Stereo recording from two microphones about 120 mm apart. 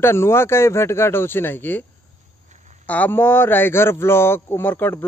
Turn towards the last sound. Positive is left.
turn(degrees=15)  # may be behind; listen again after turning